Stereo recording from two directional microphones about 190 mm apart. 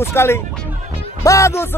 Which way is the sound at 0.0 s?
15° left (ahead or behind).